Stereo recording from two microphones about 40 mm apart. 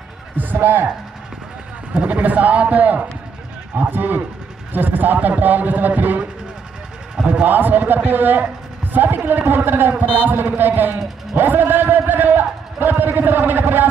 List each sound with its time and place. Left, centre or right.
0.6 s speech: right
2.0 s a man's voice: right
3.7 s a man's voice: right
7.4 s a man's voice: right
11.3 s a sound: right